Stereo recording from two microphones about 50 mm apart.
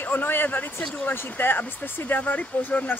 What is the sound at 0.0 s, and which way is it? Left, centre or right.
Speech, left.